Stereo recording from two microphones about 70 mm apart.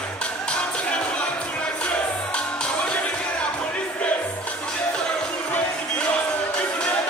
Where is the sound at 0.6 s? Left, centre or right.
Centre.